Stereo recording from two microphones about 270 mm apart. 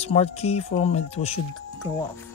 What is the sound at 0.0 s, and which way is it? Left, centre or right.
Speech, left.